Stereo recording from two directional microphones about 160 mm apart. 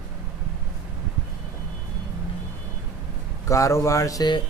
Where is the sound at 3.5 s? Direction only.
20° left (ahead or behind).